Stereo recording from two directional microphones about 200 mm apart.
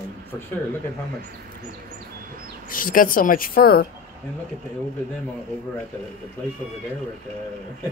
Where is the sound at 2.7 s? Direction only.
45° left (ahead or behind).